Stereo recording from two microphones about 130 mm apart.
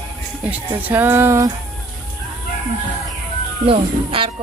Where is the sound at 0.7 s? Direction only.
15° right (ahead or behind).